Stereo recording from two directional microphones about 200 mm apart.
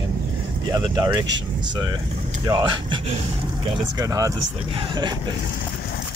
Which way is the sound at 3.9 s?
15° right (ahead or behind).